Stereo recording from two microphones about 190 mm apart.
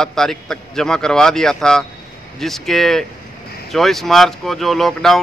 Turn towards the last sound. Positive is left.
turn(degrees=0)  # may be behind; listen again after turning